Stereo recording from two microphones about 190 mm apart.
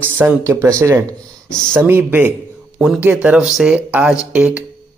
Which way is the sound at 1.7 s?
10° right (ahead or behind).